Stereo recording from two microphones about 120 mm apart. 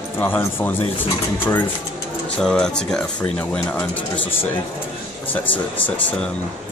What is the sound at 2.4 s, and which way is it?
Speech, 5° left (ahead or behind).